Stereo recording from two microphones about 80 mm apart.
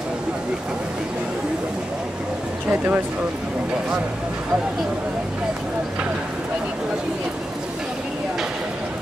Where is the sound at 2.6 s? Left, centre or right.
Centre.